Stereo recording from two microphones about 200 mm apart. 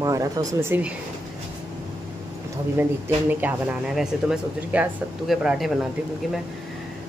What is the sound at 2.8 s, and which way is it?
Speech, 10° right (ahead or behind).